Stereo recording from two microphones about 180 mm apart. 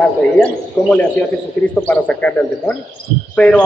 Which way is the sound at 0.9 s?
5° left (ahead or behind).